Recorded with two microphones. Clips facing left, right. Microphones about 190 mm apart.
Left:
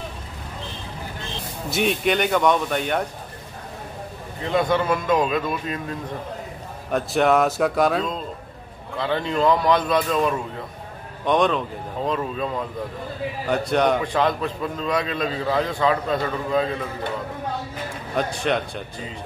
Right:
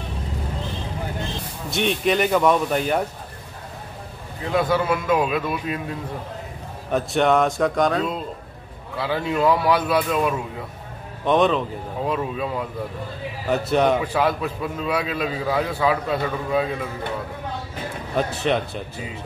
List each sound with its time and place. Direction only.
1.7 s a man's voice: centre (ahead or behind)
4.4 s a man's voice: 5° right (ahead or behind)
8.9 s a man's voice: 5° right (ahead or behind)
18.1 s a man's voice: centre (ahead or behind)